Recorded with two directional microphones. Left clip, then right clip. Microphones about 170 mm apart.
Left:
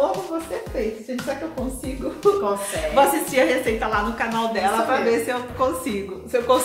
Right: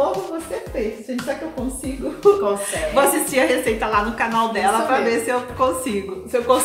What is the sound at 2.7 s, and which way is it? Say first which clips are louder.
A woman's voice: left 1 dB; 25° right (ahead or behind).